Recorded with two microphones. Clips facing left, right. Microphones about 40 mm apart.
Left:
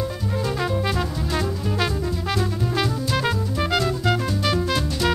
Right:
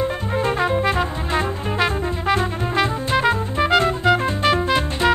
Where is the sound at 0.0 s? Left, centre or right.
Right.